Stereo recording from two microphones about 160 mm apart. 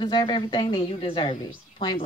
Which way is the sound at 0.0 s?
30° left (ahead or behind).